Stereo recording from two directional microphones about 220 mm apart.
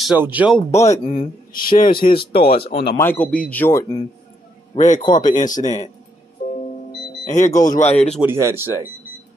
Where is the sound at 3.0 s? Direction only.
5° left (ahead or behind).